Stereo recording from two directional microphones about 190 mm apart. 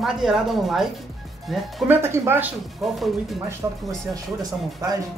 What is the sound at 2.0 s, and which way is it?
Speech, 15° right (ahead or behind).